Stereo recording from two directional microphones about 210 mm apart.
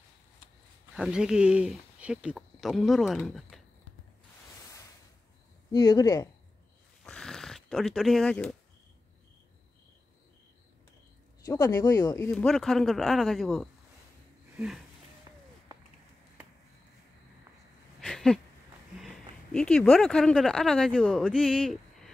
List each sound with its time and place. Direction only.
0.9 s speech: 5° right (ahead or behind)
5.7 s speech: 20° left (ahead or behind)
7.1 s a sound: 5° left (ahead or behind)
11.4 s speech: 15° left (ahead or behind)
12.3 s a man's voice: 5° left (ahead or behind)
18.0 s a sound: 5° left (ahead or behind)
18.9 s speech: centre (ahead or behind)